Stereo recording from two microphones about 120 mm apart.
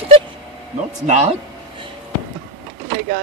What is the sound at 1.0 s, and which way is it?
Speech, 65° right (ahead or behind).